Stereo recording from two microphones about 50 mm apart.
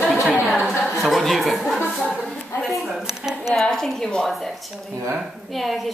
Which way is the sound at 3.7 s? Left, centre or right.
Centre.